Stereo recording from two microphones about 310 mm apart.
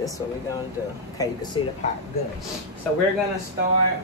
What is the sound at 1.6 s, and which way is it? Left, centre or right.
Speech, centre.